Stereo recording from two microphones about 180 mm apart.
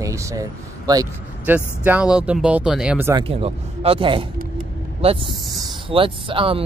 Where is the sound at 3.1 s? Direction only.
30° right (ahead or behind).